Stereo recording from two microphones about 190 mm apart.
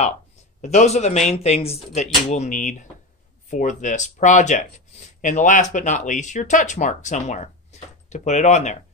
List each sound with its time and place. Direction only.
0.6 s speech: 40° left (ahead or behind)